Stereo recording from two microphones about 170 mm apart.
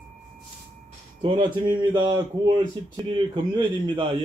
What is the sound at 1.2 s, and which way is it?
Speech, 30° right (ahead or behind).